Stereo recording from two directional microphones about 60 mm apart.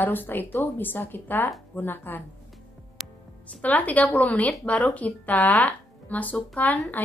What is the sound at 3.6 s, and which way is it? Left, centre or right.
Speech, left.